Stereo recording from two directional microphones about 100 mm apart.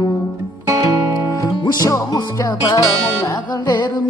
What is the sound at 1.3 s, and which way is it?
Music, 35° left (ahead or behind).